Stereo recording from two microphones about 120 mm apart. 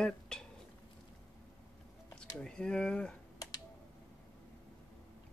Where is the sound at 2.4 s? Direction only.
5° left (ahead or behind).